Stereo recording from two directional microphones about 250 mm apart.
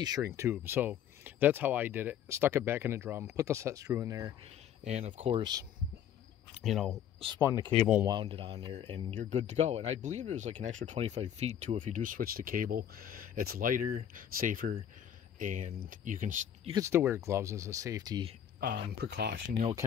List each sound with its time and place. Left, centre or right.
0.0 s speech: centre
4.8 s speech: right
6.6 s speech: centre
7.4 s speech: centre
7.8 s speech: centre
8.2 s speech: right
16.7 s speech: centre
18.6 s speech: right